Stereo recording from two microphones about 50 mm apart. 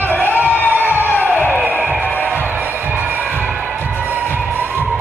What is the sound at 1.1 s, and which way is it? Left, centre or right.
Music, right.